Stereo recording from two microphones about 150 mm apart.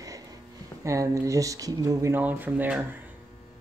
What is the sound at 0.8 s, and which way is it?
Speech, 20° right (ahead or behind).